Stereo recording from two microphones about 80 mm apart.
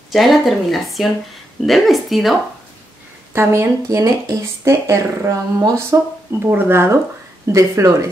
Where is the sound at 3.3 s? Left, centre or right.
Right.